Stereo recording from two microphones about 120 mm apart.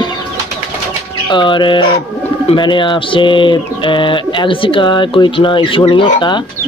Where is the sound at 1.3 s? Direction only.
40° left (ahead or behind).